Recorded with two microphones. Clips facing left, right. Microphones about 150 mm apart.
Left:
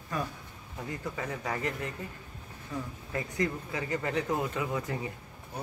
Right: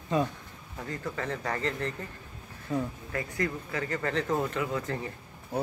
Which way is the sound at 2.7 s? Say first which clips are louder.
Right 7 dB; 20° right (ahead or behind).